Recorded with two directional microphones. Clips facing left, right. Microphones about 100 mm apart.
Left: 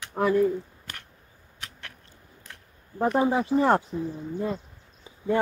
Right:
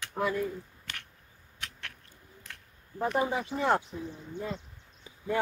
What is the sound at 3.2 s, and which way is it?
Speech, 35° left (ahead or behind).